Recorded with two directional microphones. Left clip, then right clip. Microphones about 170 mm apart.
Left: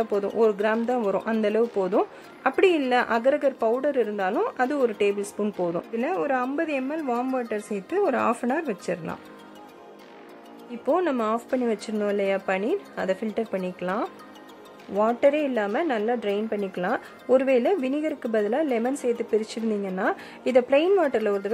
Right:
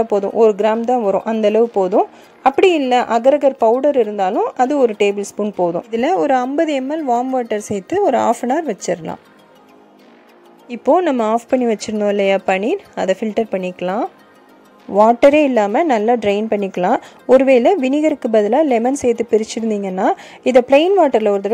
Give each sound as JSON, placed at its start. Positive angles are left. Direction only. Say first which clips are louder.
{"t": 0.1, "sound": "speech", "louder": "right 9 dB", "side_deg": -25}
{"t": 5.9, "sound": "a woman's voice", "louder": "right 11 dB", "side_deg": -35}
{"t": 11.1, "sound": "a woman's voice", "louder": "right 9 dB", "side_deg": -35}